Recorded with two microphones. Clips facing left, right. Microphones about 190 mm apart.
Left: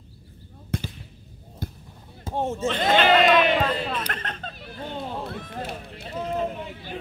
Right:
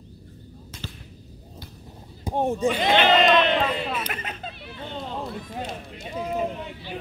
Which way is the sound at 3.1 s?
5° left (ahead or behind).